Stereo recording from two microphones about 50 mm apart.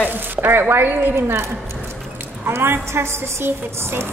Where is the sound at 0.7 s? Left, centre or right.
Right.